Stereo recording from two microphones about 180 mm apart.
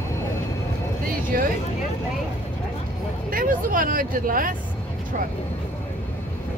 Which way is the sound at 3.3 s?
50° right (ahead or behind).